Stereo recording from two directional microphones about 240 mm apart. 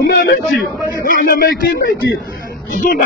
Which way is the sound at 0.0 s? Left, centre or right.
Left.